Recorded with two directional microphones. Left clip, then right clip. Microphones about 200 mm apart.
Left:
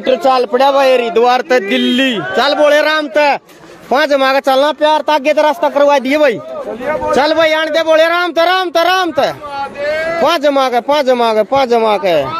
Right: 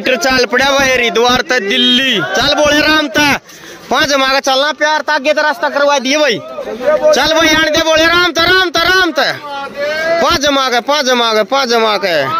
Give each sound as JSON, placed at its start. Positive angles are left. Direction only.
{"t": 0.2, "sound": "speech", "side_deg": -10}
{"t": 4.6, "sound": "speech", "side_deg": 20}
{"t": 7.1, "sound": "speech", "side_deg": 0}